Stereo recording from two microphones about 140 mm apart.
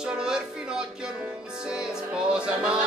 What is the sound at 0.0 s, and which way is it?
Music, 5° right (ahead or behind).